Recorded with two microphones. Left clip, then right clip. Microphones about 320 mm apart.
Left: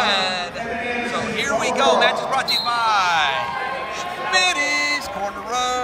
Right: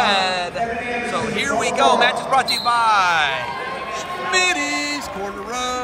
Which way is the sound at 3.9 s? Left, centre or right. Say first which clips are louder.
Right 1 dB; centre.